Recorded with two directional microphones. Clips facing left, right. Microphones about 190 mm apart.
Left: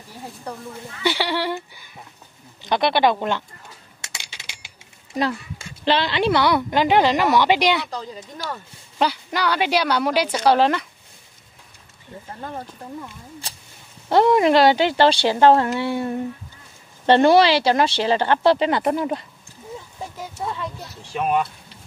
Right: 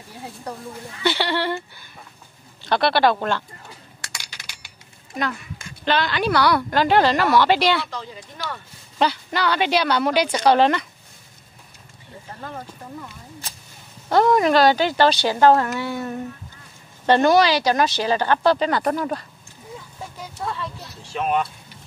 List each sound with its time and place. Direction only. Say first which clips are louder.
1.0 s a woman's voice: even; 10° left (ahead or behind)
4.1 s a sound: left 3 dB; 25° left (ahead or behind)
5.1 s a woman's voice: left 4 dB; 30° left (ahead or behind)
7.9 s speech: left 2 dB; 35° left (ahead or behind)
8.9 s a woman's voice: even; 10° left (ahead or behind)
12.4 s a woman's voice: left 2 dB; 25° left (ahead or behind)
14.0 s a woman's voice: left 1 dB; 25° left (ahead or behind)